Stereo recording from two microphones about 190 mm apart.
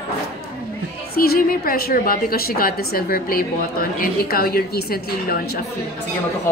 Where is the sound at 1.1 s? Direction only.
55° left (ahead or behind).